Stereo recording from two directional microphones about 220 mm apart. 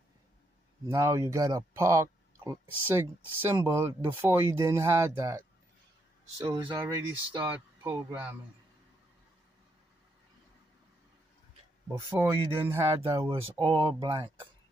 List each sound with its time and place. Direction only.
0.8 s speech: 15° right (ahead or behind)
11.9 s speech: 10° right (ahead or behind)
13.3 s speech: 25° right (ahead or behind)